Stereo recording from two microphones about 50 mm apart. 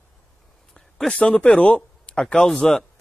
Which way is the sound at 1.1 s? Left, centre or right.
Left.